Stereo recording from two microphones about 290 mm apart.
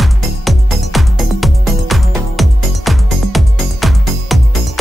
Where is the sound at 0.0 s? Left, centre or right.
Centre.